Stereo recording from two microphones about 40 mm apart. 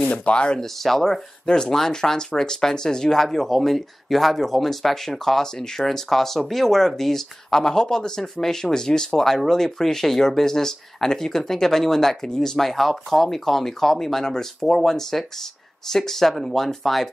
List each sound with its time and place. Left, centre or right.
0.1 s speech: left
0.6 s speech: centre
1.4 s speech: centre